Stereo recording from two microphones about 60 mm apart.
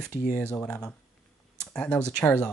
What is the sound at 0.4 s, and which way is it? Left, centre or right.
Speech, centre.